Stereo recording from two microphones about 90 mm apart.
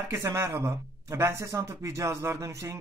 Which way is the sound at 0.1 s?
30° right (ahead or behind).